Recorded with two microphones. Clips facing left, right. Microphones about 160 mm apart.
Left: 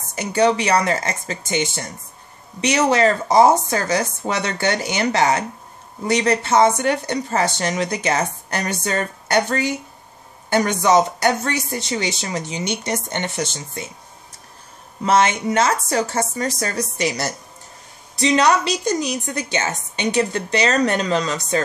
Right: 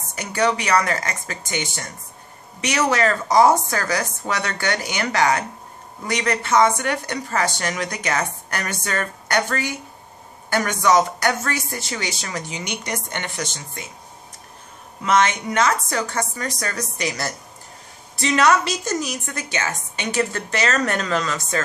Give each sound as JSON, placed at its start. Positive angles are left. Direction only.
{"t": 0.1, "sound": "a woman's voice", "side_deg": 25}
{"t": 15.0, "sound": "a woman's voice", "side_deg": 30}
{"t": 18.5, "sound": "a woman's voice", "side_deg": 20}
{"t": 21.3, "sound": "speech", "side_deg": 35}